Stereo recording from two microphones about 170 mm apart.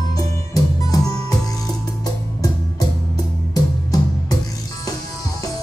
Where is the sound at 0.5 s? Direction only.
20° left (ahead or behind).